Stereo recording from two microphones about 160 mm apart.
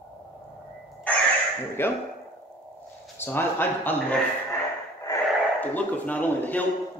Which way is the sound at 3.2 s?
15° left (ahead or behind).